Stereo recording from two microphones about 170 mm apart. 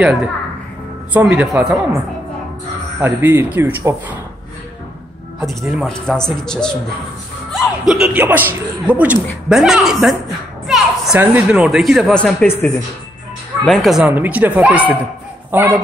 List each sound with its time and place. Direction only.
0.0 s a man's voice: 5° right (ahead or behind)
3.0 s speech: 15° right (ahead or behind)
5.4 s a man's voice: centre (ahead or behind)
13.7 s speech: centre (ahead or behind)